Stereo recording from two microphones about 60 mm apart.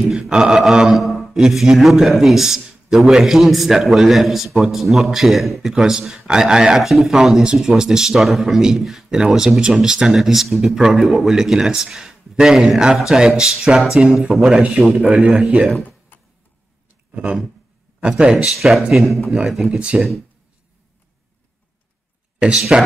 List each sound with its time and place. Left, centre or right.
0.1 s a man's voice: centre
14.6 s a man's voice: right
16.1 s a sound: left
18.0 s speech: centre
18.9 s a man's voice: centre
22.6 s speech: centre